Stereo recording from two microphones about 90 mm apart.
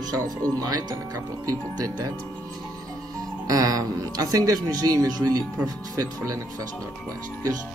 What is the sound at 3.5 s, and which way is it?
Speech, 45° right (ahead or behind).